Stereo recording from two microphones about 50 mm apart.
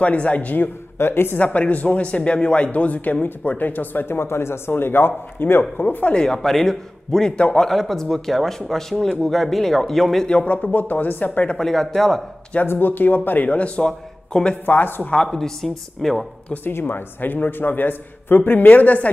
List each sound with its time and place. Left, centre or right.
0.0 s a man's voice: left
0.9 s speech: left
1.4 s speech: left
6.1 s a man's voice: centre
10.2 s a man's voice: left
10.5 s speech: left
11.5 s a man's voice: centre
12.6 s speech: left
13.5 s a man's voice: left
14.7 s speech: left
15.3 s a man's voice: centre
16.6 s speech: left